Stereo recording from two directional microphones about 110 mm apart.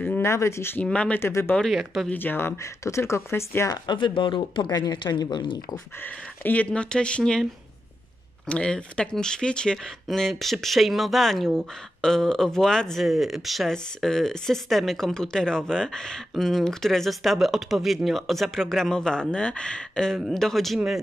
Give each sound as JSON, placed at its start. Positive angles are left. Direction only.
{"t": 0.0, "sound": "a sound", "side_deg": 15}
{"t": 0.3, "sound": "speech", "side_deg": 25}
{"t": 0.8, "sound": "speech", "side_deg": 10}
{"t": 1.5, "sound": "speech", "side_deg": 5}
{"t": 2.0, "sound": "speech", "side_deg": 15}
{"t": 3.7, "sound": "speech", "side_deg": 45}
{"t": 5.9, "sound": "speech", "side_deg": 15}
{"t": 8.5, "sound": "speech", "side_deg": 10}